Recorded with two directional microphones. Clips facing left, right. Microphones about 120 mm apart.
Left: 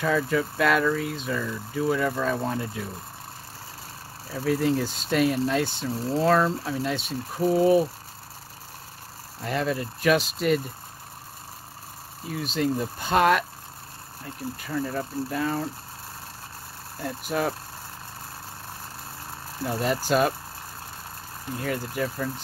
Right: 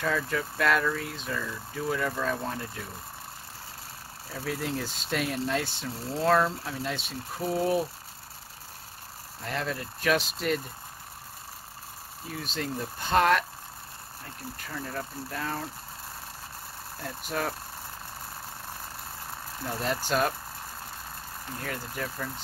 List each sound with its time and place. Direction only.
0.0 s speech: 5° left (ahead or behind)
4.5 s speech: centre (ahead or behind)
9.4 s speech: 5° left (ahead or behind)
12.3 s speech: 5° left (ahead or behind)
17.0 s speech: 5° left (ahead or behind)
19.8 s speech: 5° left (ahead or behind)
21.5 s speech: 5° left (ahead or behind)